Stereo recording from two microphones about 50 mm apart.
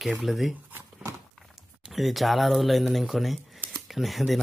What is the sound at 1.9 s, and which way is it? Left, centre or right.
Speech, centre.